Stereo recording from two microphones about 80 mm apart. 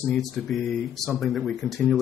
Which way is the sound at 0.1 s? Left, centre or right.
Centre.